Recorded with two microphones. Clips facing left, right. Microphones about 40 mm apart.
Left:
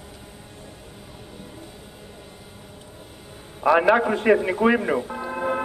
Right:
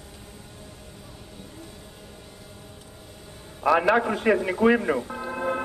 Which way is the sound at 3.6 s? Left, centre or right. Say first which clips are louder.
Left 3 dB; centre.